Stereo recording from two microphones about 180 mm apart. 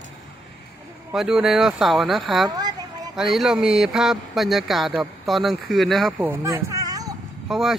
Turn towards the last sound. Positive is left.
turn(degrees=0)  # may be behind; listen again after turning